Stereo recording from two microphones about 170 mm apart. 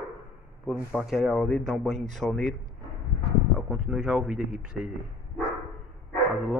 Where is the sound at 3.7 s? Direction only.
5° right (ahead or behind).